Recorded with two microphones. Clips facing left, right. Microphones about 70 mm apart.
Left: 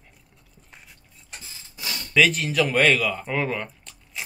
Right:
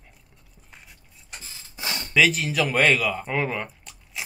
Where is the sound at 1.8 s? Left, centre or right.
Right.